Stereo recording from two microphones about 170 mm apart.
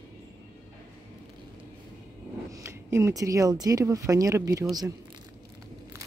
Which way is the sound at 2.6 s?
15° right (ahead or behind).